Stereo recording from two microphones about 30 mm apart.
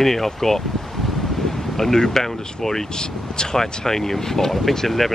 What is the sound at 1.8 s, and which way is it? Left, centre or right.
Speech, centre.